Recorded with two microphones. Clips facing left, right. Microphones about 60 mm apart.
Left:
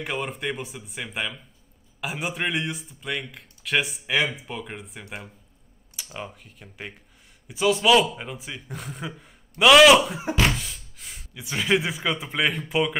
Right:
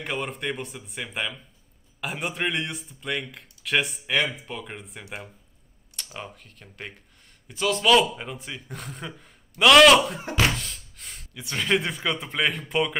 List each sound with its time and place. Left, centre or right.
0.0 s speech: centre